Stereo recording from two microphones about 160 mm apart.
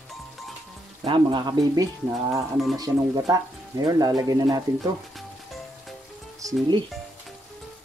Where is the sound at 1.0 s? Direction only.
30° right (ahead or behind).